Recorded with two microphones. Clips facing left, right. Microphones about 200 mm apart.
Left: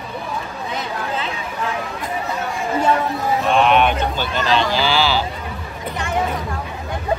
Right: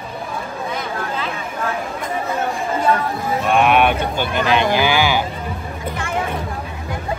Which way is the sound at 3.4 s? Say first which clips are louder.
Right 1 dB; 10° right (ahead or behind).